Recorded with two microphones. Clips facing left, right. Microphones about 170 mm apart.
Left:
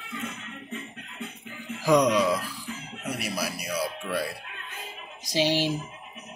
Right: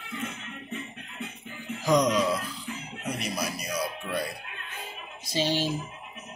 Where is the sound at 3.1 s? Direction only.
5° left (ahead or behind).